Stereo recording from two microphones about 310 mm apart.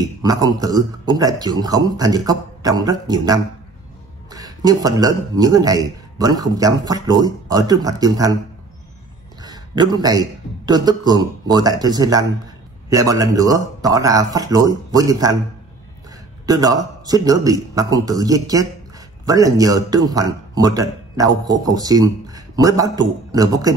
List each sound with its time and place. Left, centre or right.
0.2 s a man's voice: centre
9.4 s a man's voice: centre
16.4 s a man's voice: centre